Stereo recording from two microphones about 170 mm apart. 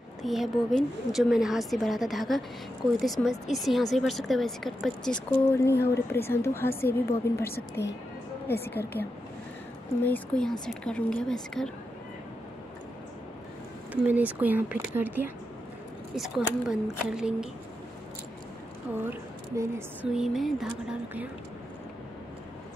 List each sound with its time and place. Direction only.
0.2 s speech: centre (ahead or behind)
5.6 s a woman's voice: 15° left (ahead or behind)
10.0 s a woman's voice: 10° left (ahead or behind)
14.0 s speech: 10° right (ahead or behind)
19.0 s speech: 15° right (ahead or behind)
20.1 s speech: centre (ahead or behind)